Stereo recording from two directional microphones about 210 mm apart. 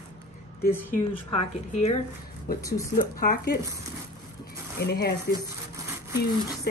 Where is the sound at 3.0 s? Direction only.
45° left (ahead or behind).